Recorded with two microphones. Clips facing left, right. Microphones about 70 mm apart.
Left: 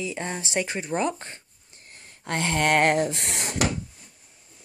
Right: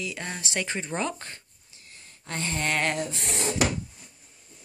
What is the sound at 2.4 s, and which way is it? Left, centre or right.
Speech, left.